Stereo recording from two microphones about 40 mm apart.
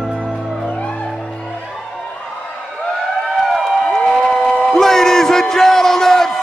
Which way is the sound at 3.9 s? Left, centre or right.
Centre.